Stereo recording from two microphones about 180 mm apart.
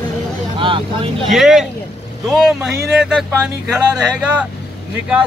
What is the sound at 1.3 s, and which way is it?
Speech, centre (ahead or behind).